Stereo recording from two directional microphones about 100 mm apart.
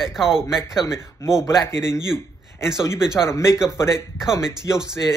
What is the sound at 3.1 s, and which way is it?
Speech, 30° left (ahead or behind).